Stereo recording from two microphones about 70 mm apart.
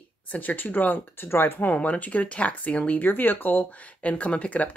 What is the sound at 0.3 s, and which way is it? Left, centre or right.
Speech, left.